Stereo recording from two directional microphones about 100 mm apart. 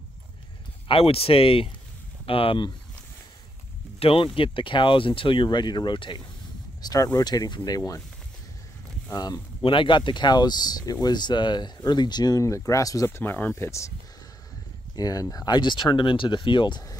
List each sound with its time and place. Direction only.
0.8 s speech: 70° left (ahead or behind)
4.0 s speech: 70° left (ahead or behind)
4.4 s speech: 60° left (ahead or behind)
6.8 s speech: 40° left (ahead or behind)
9.1 s speech: 40° left (ahead or behind)
9.6 s speech: 60° left (ahead or behind); by 13.9 s 30° left (ahead or behind)
15.0 s speech: 40° left (ahead or behind)